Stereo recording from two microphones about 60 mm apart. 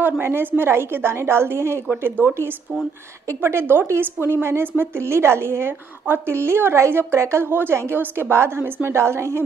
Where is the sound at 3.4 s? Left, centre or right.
Right.